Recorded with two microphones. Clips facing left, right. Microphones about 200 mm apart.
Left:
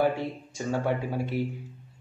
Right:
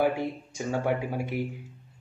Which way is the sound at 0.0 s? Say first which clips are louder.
Even; 10° right (ahead or behind).